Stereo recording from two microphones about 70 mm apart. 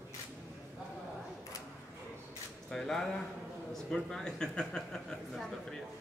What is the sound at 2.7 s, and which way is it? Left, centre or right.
Speech, centre.